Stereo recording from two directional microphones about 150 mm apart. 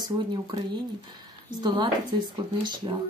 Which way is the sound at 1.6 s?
30° right (ahead or behind).